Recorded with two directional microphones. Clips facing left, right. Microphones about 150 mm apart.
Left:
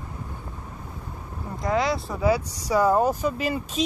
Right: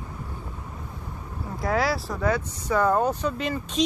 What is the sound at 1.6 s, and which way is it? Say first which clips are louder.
Speech: left 1 dB; 5° right (ahead or behind).